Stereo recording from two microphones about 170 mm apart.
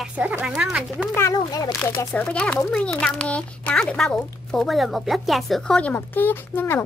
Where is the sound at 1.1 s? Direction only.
20° left (ahead or behind).